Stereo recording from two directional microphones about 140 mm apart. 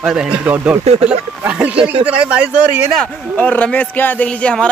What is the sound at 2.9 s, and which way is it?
Speech, 10° left (ahead or behind).